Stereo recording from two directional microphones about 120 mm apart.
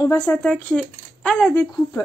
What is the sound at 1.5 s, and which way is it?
Speech, 30° left (ahead or behind).